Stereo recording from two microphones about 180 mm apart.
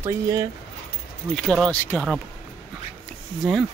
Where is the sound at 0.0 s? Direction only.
20° right (ahead or behind).